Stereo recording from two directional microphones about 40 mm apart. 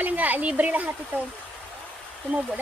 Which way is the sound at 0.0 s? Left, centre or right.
Right.